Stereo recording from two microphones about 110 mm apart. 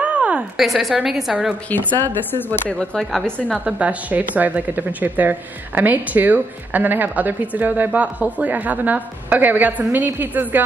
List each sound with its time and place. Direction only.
0.0 s a woman's voice: 10° right (ahead or behind)
2.3 s speech: 20° left (ahead or behind)
2.8 s a woman's voice: 5° left (ahead or behind)
3.6 s speech: 10° right (ahead or behind)